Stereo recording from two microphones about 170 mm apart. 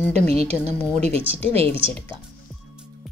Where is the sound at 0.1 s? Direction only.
40° right (ahead or behind).